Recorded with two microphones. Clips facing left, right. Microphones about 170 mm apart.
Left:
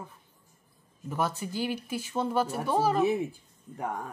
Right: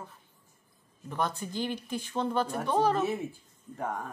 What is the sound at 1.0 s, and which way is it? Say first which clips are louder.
Speech: left 2 dB; 5° left (ahead or behind).